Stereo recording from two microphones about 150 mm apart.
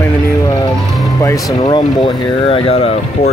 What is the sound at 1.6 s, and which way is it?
Speech, 35° left (ahead or behind).